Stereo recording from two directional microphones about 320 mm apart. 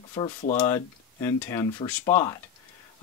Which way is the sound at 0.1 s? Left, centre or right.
Centre.